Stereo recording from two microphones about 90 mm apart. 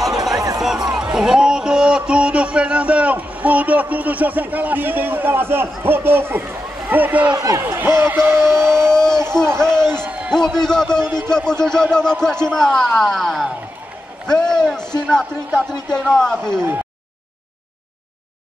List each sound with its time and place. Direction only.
0.6 s music: 5° right (ahead or behind)
1.0 s speech: 5° right (ahead or behind)
7.3 s speech: 40° right (ahead or behind)
7.6 s speech: 25° right (ahead or behind)
8.8 s a sound: 5° left (ahead or behind)
9.8 s music: 25° right (ahead or behind)
10.3 s a man's voice: 5° left (ahead or behind)